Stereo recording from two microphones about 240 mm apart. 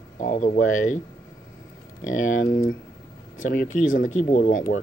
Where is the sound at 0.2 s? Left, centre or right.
Left.